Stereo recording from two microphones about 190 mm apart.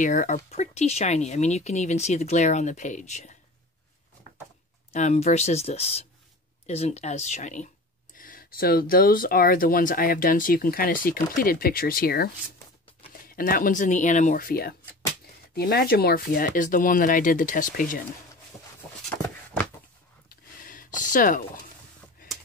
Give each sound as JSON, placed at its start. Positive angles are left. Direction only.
{"t": 0.0, "sound": "speech", "side_deg": 40}
{"t": 4.9, "sound": "speech", "side_deg": 35}
{"t": 20.2, "sound": "a sound", "side_deg": 45}